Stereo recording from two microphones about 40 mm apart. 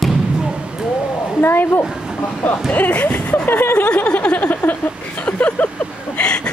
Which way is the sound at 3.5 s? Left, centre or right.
Left.